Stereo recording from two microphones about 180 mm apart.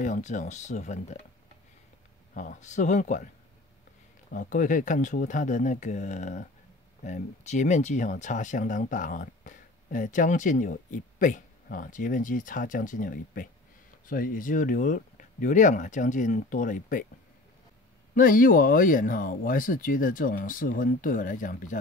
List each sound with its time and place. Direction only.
0.0 s speech: 40° left (ahead or behind)
2.3 s speech: 45° left (ahead or behind)
4.3 s speech: 45° left (ahead or behind)
18.1 s speech: 50° left (ahead or behind)